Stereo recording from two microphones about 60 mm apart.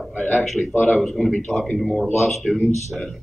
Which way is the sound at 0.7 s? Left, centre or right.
Left.